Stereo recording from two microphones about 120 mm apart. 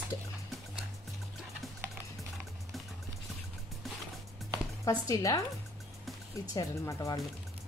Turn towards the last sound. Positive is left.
turn(degrees=30)  # may be behind; listen again after turning